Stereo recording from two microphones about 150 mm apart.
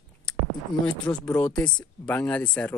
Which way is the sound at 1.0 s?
10° left (ahead or behind).